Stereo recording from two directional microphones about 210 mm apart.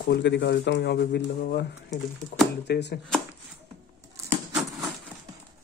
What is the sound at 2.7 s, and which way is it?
Speech, 55° left (ahead or behind).